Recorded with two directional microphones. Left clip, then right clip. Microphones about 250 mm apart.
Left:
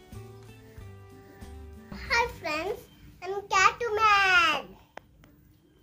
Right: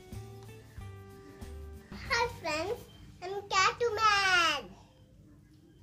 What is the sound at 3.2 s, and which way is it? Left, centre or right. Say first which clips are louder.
A child's voice: left 5 dB; centre.